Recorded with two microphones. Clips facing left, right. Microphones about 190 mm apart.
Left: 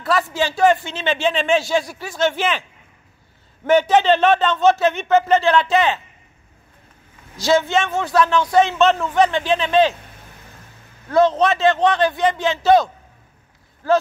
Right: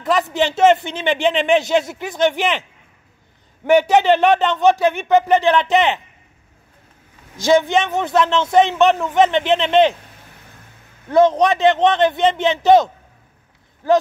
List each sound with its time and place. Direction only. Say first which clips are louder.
0.0 s a man's voice: right 2 dB; 20° right (ahead or behind)
3.6 s speech: right 1 dB; 15° right (ahead or behind)
7.4 s a man's voice: right 2 dB; 15° right (ahead or behind)
11.1 s a man's voice: right 2 dB; 20° right (ahead or behind)